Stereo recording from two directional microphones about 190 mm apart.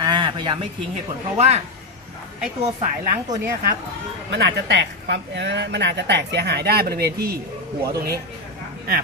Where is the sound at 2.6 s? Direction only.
40° right (ahead or behind).